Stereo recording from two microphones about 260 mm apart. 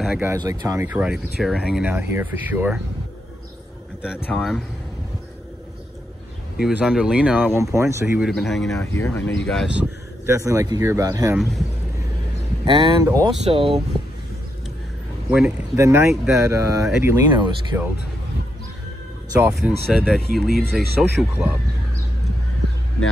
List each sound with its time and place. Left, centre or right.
0.0 s speech: centre
4.0 s speech: centre
6.5 s speech: centre
8.4 s speech: centre
9.5 s speech: centre
11.3 s speech: centre
12.6 s speech: centre
15.3 s speech: centre
19.4 s speech: centre